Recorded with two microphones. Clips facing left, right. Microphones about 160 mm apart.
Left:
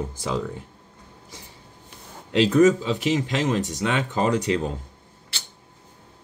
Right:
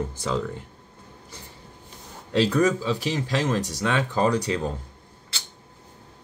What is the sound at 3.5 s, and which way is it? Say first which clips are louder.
Speech: left 1 dB; 40° right (ahead or behind).